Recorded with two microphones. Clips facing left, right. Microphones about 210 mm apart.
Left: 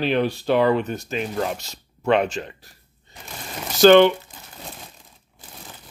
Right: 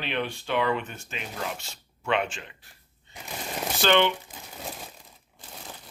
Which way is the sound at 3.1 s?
40° left (ahead or behind).